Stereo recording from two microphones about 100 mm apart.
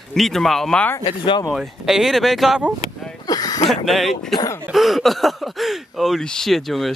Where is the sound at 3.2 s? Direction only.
40° left (ahead or behind).